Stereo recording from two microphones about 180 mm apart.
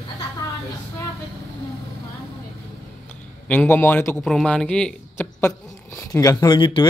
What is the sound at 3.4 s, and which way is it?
Speech, 10° left (ahead or behind).